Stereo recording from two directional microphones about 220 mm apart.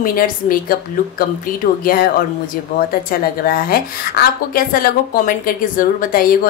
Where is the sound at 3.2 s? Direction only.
45° left (ahead or behind).